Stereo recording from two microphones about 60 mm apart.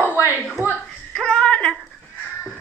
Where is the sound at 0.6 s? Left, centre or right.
Right.